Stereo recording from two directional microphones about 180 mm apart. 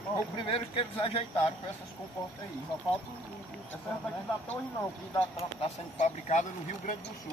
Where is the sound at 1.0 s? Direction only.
30° left (ahead or behind).